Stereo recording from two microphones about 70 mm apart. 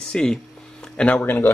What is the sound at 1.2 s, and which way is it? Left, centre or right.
Speech, left.